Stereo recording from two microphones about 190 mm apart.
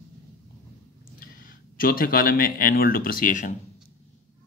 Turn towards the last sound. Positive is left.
turn(degrees=45)  # may be behind; listen again after turning